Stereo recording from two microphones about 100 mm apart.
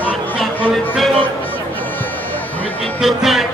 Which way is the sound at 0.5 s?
20° left (ahead or behind).